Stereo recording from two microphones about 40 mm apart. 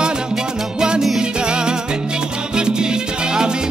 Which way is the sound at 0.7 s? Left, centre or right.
Right.